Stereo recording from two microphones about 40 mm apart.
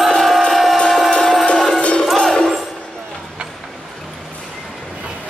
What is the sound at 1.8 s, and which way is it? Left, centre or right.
Music, left.